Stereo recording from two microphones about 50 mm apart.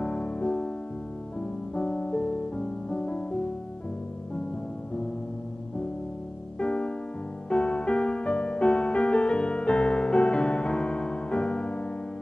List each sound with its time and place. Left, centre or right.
0.0 s music: left
1.8 s music: left
6.6 s music: centre